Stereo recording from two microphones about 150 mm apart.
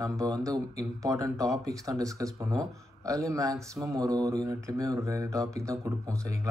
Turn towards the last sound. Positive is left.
turn(degrees=-20)  # may be behind; listen again after turning